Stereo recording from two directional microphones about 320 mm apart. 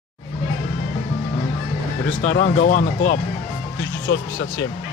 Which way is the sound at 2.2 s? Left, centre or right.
Left.